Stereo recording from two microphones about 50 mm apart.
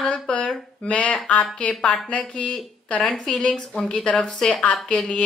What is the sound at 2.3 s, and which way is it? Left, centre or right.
Speech, centre.